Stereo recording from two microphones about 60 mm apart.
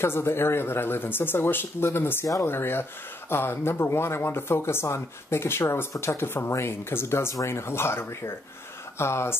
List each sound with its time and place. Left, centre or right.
0.0 s speech: left